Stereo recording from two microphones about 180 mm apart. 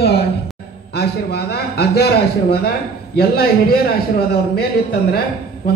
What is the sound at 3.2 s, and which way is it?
Speech, 60° left (ahead or behind).